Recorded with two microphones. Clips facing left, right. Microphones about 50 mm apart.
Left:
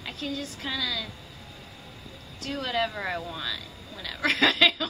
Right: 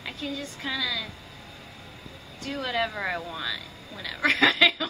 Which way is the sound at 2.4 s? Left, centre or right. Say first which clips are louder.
Even; centre.